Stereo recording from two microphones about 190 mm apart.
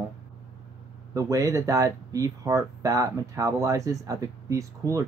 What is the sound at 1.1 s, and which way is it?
Speech, 15° right (ahead or behind).